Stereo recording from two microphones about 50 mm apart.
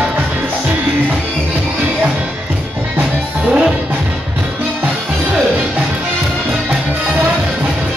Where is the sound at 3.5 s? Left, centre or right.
Centre.